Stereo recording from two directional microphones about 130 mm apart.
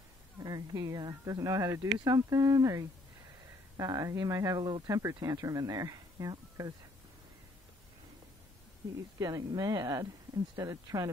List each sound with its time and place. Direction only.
0.4 s speech: 30° right (ahead or behind)
9.2 s speech: 25° right (ahead or behind)